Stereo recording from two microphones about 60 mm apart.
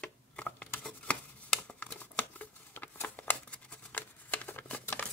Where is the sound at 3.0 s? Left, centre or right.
Left.